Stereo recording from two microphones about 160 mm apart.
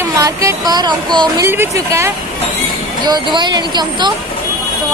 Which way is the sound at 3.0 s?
25° right (ahead or behind).